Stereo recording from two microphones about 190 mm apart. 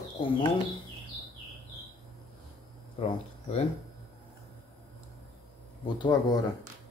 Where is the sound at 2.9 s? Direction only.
30° left (ahead or behind).